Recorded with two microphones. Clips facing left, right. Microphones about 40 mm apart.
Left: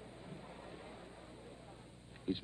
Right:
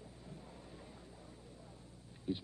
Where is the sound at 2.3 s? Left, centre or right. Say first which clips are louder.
Left 1 dB; left.